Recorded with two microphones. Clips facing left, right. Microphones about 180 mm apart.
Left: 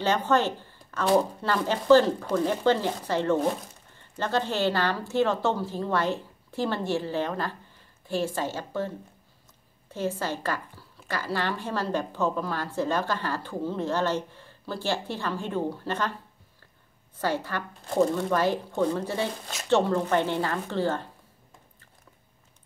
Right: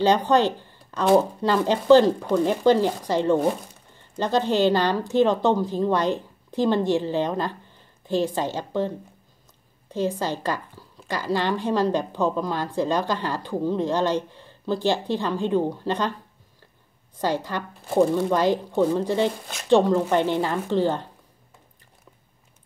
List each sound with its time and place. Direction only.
0.0 s a woman's voice: 15° right (ahead or behind)
17.2 s a woman's voice: 15° right (ahead or behind)